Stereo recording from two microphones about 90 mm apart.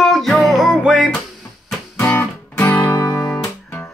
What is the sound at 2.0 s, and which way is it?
Music, 20° left (ahead or behind).